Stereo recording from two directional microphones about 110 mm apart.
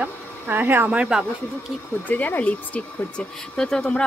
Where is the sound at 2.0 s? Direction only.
15° left (ahead or behind).